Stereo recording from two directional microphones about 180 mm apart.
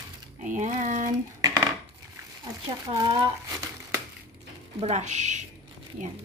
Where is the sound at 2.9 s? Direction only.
30° right (ahead or behind).